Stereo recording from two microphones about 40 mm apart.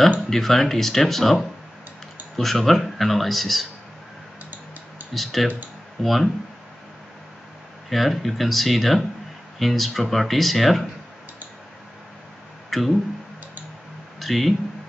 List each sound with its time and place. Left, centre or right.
0.3 s speech: centre
5.1 s speech: centre
7.9 s speech: centre
12.6 s a sound: centre
14.2 s speech: centre